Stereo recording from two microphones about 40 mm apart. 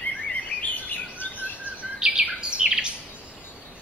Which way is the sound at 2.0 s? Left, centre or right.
Centre.